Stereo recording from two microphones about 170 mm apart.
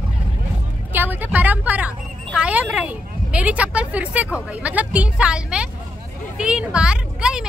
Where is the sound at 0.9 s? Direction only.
10° right (ahead or behind).